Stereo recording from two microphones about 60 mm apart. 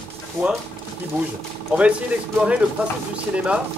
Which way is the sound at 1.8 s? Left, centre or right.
Right.